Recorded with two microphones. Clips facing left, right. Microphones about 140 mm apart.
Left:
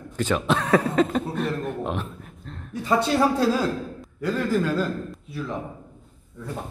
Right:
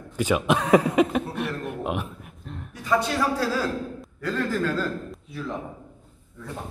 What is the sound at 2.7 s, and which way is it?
Speech, 30° left (ahead or behind).